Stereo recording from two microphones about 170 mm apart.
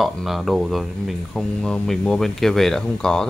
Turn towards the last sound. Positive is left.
turn(degrees=5)  # may be behind; listen again after turning